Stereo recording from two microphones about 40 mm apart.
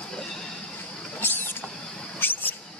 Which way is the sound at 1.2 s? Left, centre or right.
Left.